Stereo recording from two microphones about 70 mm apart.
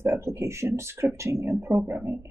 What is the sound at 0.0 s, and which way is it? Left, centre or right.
Speech, right.